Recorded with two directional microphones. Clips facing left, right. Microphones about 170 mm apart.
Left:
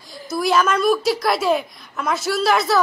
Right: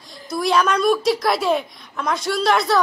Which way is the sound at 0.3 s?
Centre (ahead or behind).